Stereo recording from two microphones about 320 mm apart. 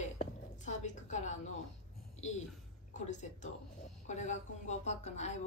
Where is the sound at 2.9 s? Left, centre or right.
Left.